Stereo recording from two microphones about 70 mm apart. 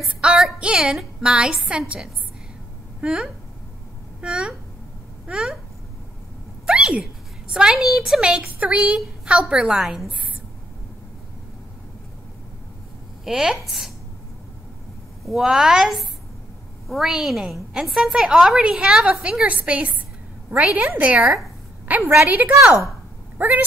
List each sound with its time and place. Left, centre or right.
0.2 s a woman's voice: centre
3.0 s a woman's voice: centre
6.6 s cat: centre
7.5 s a woman's voice: centre
13.2 s a woman's voice: centre
15.2 s a woman's voice: centre; by 23.6 s right